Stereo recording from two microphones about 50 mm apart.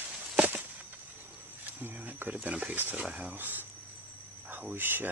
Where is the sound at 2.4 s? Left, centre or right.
Right.